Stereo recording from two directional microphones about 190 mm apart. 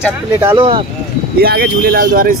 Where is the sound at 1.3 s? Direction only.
55° right (ahead or behind).